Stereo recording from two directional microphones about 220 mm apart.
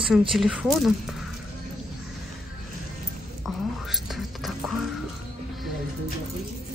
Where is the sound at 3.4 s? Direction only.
Centre (ahead or behind).